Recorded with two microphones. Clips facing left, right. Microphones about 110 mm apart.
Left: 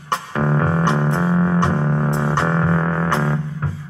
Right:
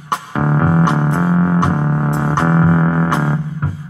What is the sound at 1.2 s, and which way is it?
Music, 30° right (ahead or behind).